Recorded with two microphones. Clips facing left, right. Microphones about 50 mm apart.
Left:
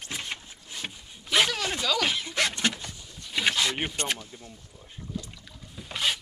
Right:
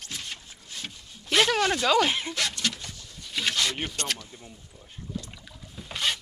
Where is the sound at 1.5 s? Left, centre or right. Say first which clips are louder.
Right 6 dB; right.